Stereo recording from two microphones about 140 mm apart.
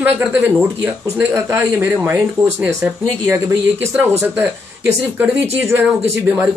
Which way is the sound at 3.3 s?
20° right (ahead or behind).